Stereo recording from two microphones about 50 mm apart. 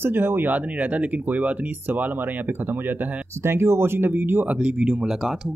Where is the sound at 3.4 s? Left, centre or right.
Right.